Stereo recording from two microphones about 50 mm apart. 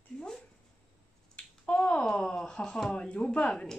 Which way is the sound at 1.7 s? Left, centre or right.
Centre.